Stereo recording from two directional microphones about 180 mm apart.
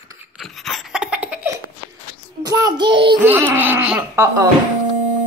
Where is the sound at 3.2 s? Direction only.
10° right (ahead or behind).